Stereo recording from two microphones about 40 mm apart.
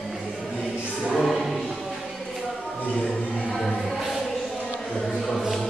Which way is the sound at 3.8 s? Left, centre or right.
Centre.